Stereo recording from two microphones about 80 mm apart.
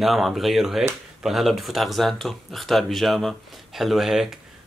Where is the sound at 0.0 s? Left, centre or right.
Centre.